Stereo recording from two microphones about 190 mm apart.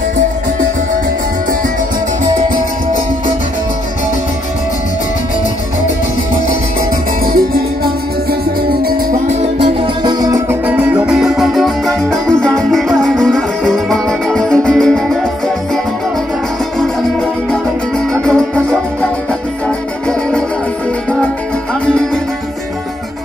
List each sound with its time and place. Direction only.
7.3 s music: 50° right (ahead or behind)
9.3 s music: 25° right (ahead or behind); by 15.0 s 5° left (ahead or behind)
17.5 s music: 5° left (ahead or behind)
20.1 s music: 5° left (ahead or behind)
21.8 s music: 5° left (ahead or behind)